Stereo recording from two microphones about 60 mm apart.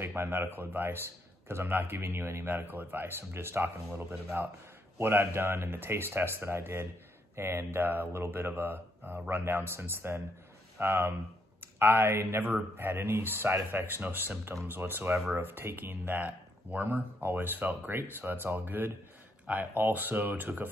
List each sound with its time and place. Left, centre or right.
0.0 s speech: right
2.5 s speech: right